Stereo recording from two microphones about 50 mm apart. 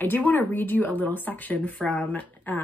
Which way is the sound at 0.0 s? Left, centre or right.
Left.